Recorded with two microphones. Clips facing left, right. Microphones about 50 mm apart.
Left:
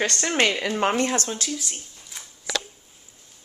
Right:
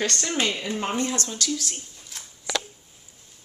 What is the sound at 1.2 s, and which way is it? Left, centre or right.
Speech, left.